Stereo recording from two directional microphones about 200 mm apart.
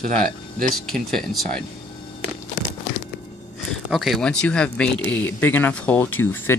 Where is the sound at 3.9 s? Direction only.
Centre (ahead or behind).